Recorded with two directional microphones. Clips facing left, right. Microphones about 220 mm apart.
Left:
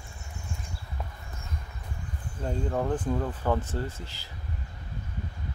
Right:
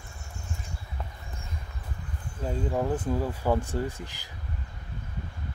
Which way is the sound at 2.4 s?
5° right (ahead or behind).